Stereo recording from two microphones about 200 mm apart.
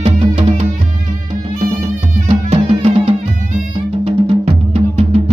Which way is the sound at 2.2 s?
30° right (ahead or behind).